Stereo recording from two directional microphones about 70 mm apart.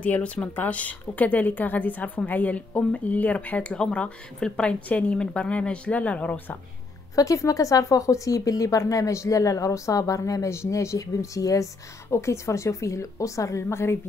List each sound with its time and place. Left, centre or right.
0.0 s speech: centre
7.2 s speech: left